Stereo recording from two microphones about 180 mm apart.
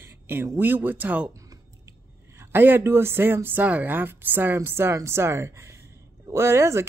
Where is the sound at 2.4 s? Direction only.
10° right (ahead or behind).